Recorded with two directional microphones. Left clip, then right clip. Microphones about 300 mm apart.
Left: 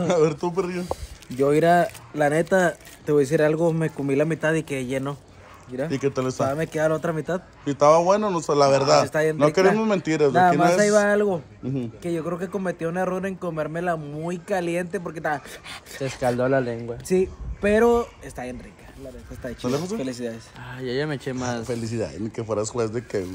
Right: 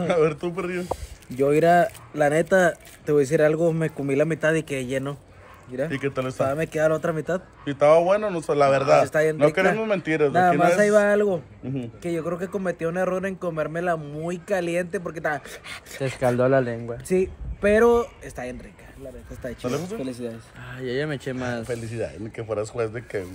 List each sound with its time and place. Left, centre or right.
0.0 s speech: centre
0.8 s speech: centre
5.9 s speech: centre
6.4 s speech: centre
7.6 s speech: centre
9.0 s speech: centre
9.8 s speech: centre
10.8 s speech: centre
16.2 s speech: right
17.1 s speech: centre
20.1 s speech: centre
20.6 s speech: centre
21.6 s speech: centre